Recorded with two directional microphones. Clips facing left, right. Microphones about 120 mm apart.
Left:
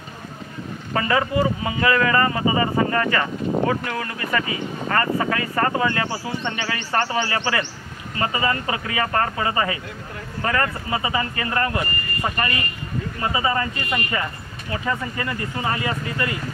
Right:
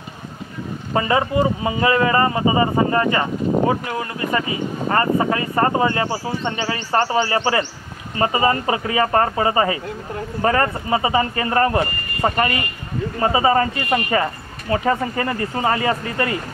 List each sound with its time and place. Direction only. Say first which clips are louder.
0.9 s speech: right 2 dB; 25° right (ahead or behind)